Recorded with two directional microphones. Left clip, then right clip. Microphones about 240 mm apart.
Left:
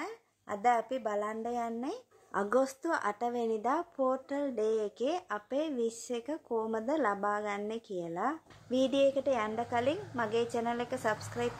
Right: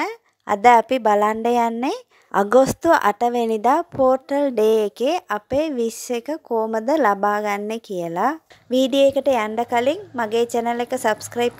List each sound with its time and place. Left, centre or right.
0.0 s a woman's voice: right